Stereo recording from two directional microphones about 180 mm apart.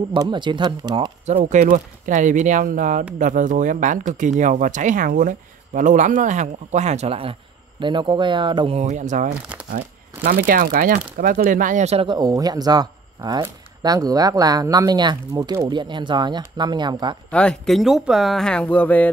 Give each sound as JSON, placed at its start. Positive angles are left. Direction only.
{"t": 0.1, "sound": "speech", "side_deg": -25}
{"t": 1.2, "sound": "speech", "side_deg": -40}
{"t": 17.3, "sound": "speech", "side_deg": 5}